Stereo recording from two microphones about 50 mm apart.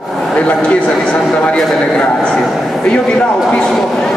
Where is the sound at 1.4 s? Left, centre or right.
Centre.